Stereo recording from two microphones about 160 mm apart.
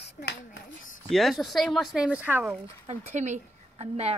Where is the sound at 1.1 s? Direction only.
Centre (ahead or behind).